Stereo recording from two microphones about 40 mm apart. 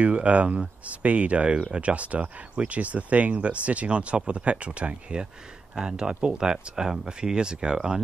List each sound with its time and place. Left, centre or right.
0.0 s speech: right
5.8 s speech: centre